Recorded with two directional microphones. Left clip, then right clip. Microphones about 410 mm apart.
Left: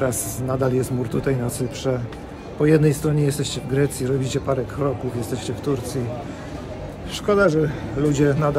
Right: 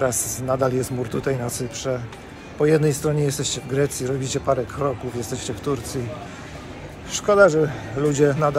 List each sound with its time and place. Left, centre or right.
0.0 s speech: centre
7.1 s speech: centre